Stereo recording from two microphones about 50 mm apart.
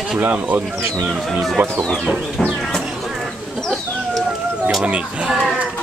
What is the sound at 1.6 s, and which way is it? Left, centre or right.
Speech, right.